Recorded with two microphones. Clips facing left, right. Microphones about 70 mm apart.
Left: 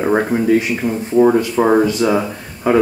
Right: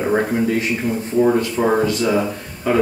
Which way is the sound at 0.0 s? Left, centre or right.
Centre.